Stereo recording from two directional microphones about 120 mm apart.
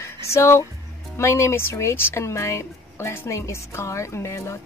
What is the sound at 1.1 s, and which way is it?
Speech, 25° left (ahead or behind).